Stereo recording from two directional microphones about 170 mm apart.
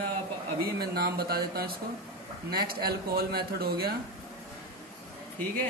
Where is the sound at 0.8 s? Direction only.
65° right (ahead or behind).